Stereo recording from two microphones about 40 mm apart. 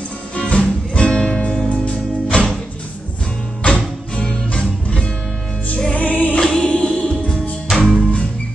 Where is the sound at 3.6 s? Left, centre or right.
Left.